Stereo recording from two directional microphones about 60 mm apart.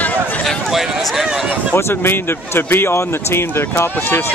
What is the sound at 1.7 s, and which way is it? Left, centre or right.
Speech, left.